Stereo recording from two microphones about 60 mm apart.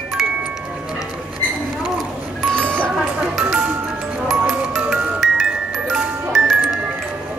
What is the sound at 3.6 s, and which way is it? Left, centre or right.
Music, right.